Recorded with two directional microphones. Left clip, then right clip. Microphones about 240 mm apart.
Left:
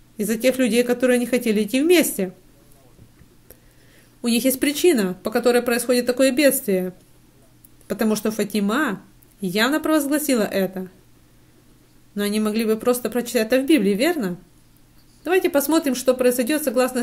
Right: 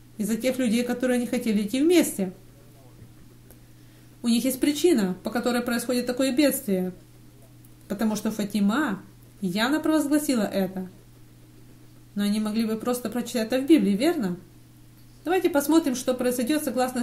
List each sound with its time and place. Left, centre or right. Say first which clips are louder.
0.2 s speech: left 6 dB; left
4.2 s speech: left 4 dB; left
7.9 s speech: left 6 dB; left
12.2 s speech: left 5 dB; left